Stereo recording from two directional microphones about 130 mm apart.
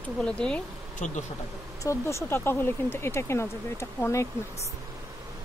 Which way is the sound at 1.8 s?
20° left (ahead or behind).